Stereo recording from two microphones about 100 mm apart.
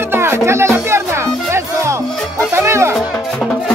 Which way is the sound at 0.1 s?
25° right (ahead or behind).